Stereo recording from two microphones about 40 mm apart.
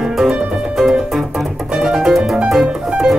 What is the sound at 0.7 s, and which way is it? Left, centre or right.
Music, centre.